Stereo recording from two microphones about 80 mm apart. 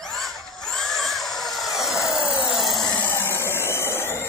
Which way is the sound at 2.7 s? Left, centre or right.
Left.